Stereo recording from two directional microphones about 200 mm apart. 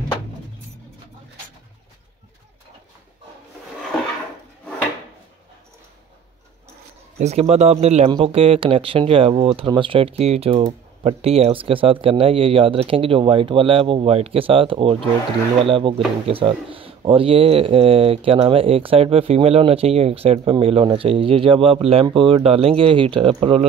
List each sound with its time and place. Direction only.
7.2 s speech: 35° right (ahead or behind)